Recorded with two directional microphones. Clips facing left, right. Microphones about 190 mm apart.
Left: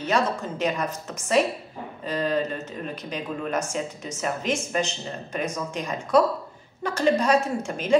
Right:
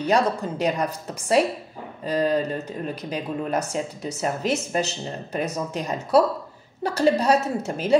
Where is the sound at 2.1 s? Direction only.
35° right (ahead or behind).